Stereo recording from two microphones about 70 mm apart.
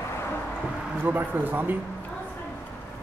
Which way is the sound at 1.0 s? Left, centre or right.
Right.